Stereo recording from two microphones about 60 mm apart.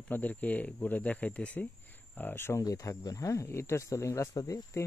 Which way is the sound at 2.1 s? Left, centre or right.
Left.